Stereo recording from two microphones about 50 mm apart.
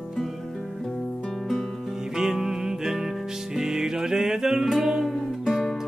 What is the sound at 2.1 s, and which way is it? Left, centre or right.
Music, centre.